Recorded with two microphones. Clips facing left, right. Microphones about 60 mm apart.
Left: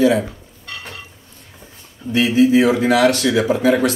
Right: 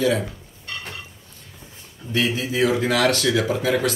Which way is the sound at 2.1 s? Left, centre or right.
Left.